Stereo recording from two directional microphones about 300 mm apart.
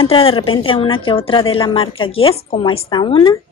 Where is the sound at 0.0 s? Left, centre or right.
Centre.